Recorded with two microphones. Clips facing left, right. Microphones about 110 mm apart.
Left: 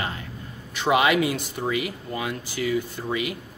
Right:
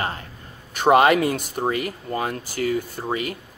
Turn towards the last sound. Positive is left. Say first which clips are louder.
# right 1 dB
turn(degrees=-40)  # may be behind; listen again after turning